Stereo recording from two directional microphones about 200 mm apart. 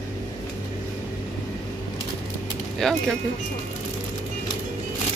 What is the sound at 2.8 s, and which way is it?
Speech, centre (ahead or behind).